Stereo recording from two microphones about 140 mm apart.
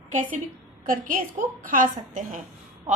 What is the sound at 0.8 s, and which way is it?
A woman's voice, 85° right.